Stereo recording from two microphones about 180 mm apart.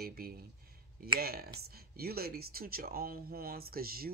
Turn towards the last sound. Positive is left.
turn(degrees=-55)  # may be behind; listen again after turning